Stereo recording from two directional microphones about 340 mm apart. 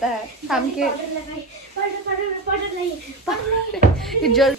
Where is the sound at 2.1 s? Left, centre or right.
Right.